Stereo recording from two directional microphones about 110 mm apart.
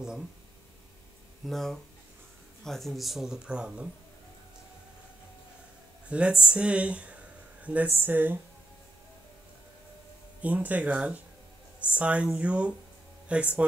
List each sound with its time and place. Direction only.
1.5 s speech: 5° left (ahead or behind)
6.0 s speech: 10° right (ahead or behind)
10.4 s speech: 15° right (ahead or behind)